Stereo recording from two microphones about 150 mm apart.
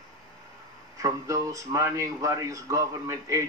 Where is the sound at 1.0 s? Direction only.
20° right (ahead or behind).